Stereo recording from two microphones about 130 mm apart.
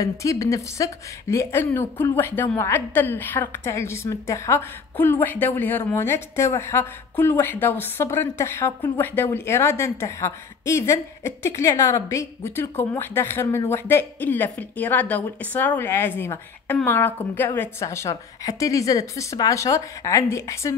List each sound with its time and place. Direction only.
0.0 s a woman's voice: 25° left (ahead or behind)